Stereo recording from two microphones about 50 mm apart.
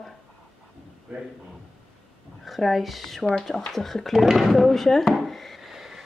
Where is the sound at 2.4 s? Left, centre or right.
Centre.